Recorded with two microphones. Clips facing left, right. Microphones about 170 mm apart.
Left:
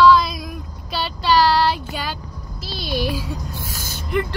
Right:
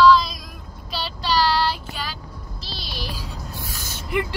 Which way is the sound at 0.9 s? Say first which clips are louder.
Left 5 dB; 50° left (ahead or behind).